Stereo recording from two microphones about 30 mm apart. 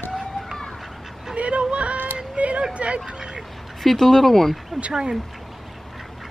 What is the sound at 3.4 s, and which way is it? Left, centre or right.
Speech, centre.